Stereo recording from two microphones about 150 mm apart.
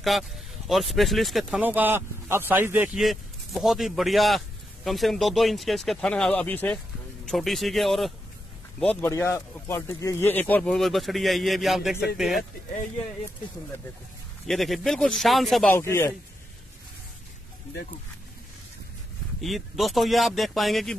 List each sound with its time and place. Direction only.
0.1 s speech: centre (ahead or behind)
1.6 s speech: 10° right (ahead or behind); by 6.8 s 10° left (ahead or behind)
7.2 s speech: centre (ahead or behind)
8.7 s speech: 15° left (ahead or behind); by 12.1 s centre (ahead or behind)
14.4 s speech: centre (ahead or behind)
15.7 s speech: 15° left (ahead or behind)
19.4 s speech: centre (ahead or behind)